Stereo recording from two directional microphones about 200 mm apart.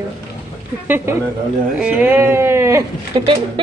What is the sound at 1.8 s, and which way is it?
Speech, 10° right (ahead or behind).